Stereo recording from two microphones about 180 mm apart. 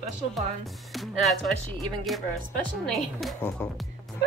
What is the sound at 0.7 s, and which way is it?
Speech, centre (ahead or behind).